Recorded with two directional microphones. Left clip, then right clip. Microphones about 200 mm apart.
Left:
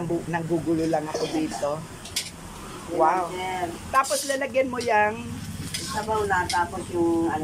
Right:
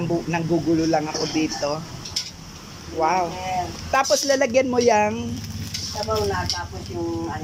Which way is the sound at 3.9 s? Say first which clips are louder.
Right 5 dB; 25° right (ahead or behind).